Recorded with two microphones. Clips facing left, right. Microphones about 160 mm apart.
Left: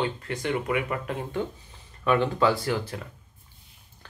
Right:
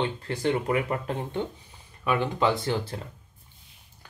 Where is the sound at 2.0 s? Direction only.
15° right (ahead or behind).